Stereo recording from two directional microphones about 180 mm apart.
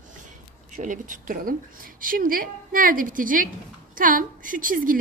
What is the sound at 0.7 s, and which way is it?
A woman's voice, 45° right (ahead or behind).